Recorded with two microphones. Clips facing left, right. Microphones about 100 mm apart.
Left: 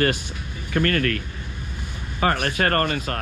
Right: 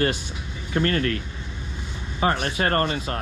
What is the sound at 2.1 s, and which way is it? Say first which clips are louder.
Speech: left 1 dB; 55° left (ahead or behind).